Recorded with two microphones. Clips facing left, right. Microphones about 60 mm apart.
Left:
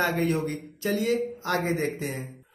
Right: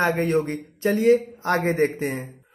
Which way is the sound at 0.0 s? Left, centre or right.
Right.